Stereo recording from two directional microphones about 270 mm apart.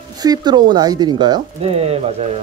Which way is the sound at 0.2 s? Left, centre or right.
Centre.